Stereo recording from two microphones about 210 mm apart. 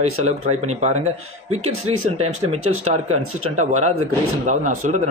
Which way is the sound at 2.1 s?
30° right (ahead or behind).